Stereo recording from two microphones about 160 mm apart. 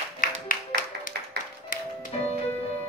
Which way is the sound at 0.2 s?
55° left (ahead or behind).